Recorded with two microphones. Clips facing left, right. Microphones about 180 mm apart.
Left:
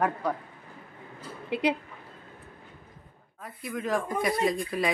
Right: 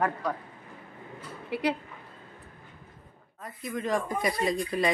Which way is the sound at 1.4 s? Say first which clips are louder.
Left 2 dB; 20° left (ahead or behind).